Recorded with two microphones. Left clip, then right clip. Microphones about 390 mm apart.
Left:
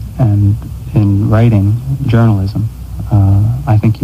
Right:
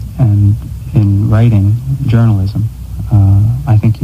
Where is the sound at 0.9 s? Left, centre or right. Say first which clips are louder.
Left 2 dB; right.